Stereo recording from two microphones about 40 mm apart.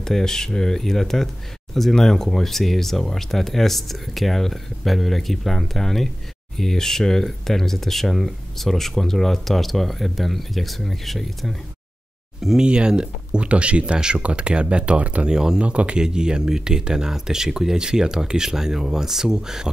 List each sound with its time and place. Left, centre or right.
0.0 s speech: centre
12.5 s speech: right
15.2 s speech: centre
15.6 s speech: right
16.0 s speech: centre